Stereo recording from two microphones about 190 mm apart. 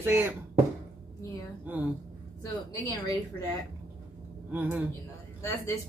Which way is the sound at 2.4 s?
20° left (ahead or behind).